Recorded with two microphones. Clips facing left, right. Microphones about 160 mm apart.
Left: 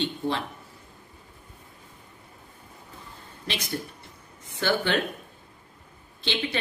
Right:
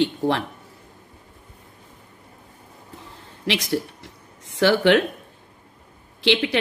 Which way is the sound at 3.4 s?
85° right.